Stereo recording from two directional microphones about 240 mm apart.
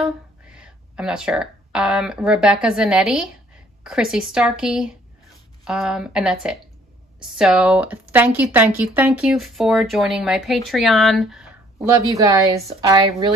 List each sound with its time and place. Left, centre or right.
0.0 s a woman's voice: centre